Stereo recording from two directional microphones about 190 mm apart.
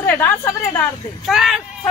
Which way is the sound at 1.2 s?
Centre (ahead or behind).